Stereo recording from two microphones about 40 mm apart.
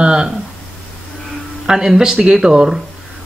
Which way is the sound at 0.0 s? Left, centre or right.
Centre.